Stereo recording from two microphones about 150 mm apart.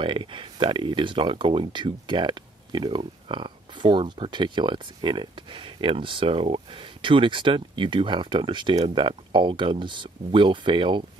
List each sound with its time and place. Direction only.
0.0 s speech: 35° right (ahead or behind)